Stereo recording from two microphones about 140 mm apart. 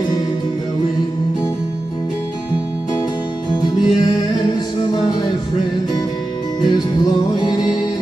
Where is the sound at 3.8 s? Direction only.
30° left (ahead or behind).